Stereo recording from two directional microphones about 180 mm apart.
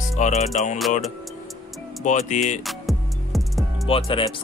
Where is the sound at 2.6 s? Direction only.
Centre (ahead or behind).